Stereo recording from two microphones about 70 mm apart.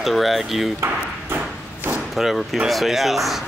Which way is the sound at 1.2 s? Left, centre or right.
Right.